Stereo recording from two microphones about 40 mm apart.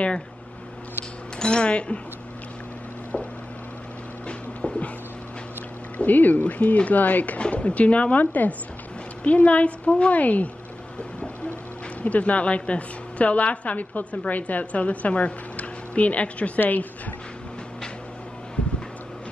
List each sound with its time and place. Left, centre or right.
1.4 s speech: left
4.3 s a sound: left
5.9 s speech: left
7.3 s a woman's voice: left
8.2 s a woman's voice: left
12.0 s a woman's voice: left
16.5 s speech: left